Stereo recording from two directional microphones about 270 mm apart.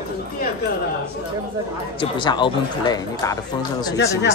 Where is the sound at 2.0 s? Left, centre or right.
Centre.